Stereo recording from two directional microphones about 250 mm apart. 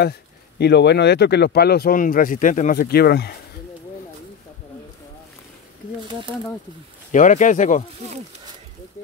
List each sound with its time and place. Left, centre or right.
0.6 s speech: left
7.1 s speech: left